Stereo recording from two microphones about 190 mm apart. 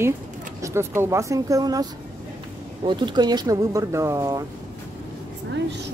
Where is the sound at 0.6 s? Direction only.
15° right (ahead or behind).